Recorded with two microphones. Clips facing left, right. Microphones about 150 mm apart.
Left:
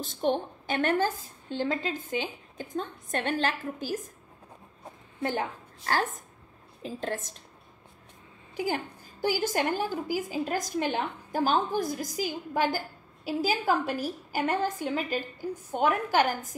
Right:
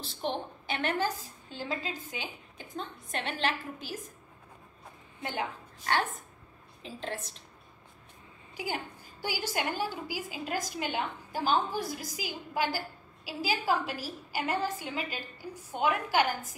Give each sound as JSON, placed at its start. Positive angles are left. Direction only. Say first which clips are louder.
{"t": 0.0, "sound": "a woman's voice", "louder": "left 6 dB", "side_deg": 45}
{"t": 5.2, "sound": "a woman's voice", "louder": "left 5 dB", "side_deg": 40}
{"t": 8.5, "sound": "a woman's voice", "louder": "left 6 dB", "side_deg": 40}